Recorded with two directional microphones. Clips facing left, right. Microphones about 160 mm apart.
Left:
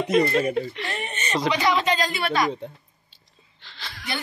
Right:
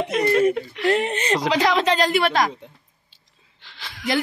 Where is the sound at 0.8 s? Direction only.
90° right.